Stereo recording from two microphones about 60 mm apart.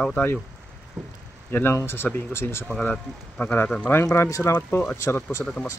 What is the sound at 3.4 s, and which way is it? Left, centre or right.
Speech, left.